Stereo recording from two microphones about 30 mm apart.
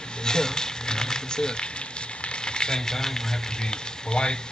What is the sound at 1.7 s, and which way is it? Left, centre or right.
Speech, left.